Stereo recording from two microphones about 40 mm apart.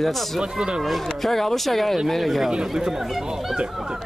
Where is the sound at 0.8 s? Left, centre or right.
Centre.